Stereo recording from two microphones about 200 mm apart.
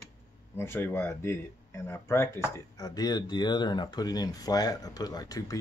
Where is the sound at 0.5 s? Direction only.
10° left (ahead or behind).